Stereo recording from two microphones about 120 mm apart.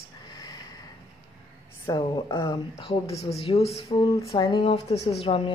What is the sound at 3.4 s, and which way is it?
Speech, 55° left (ahead or behind).